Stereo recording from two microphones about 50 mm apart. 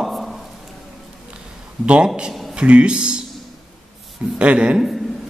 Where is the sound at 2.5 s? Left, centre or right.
Right.